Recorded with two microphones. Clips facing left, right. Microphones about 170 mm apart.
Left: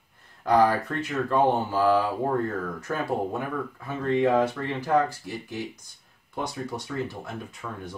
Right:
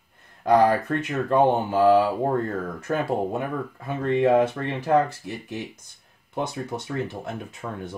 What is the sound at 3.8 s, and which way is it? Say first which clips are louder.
Speech: right 3 dB; 20° right (ahead or behind).